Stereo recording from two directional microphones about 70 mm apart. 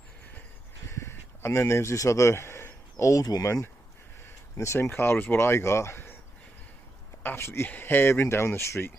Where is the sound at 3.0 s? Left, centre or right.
Left.